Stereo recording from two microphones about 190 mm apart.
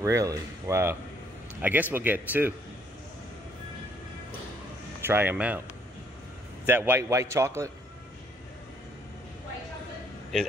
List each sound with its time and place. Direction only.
0.0 s a man's voice: 15° right (ahead or behind)
5.0 s a man's voice: 10° right (ahead or behind)
6.6 s a man's voice: 10° right (ahead or behind)